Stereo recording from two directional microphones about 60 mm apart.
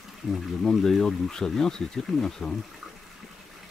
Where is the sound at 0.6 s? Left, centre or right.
Centre.